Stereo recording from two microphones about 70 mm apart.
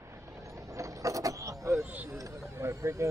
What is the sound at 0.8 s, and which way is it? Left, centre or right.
Mechanisms, right.